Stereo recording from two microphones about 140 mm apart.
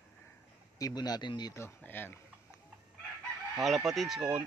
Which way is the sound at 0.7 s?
25° left (ahead or behind).